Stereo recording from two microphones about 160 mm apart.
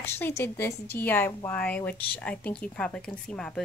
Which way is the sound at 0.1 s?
15° left (ahead or behind).